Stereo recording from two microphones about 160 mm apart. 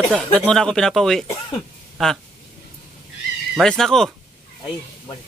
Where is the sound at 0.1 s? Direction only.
5° left (ahead or behind).